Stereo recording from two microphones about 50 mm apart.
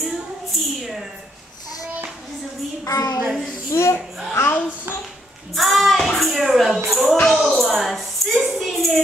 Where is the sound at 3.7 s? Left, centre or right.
Left.